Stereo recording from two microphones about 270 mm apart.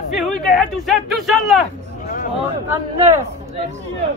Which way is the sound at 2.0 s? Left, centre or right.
Left.